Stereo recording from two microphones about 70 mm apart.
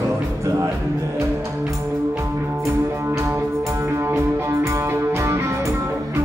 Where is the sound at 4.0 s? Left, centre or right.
Right.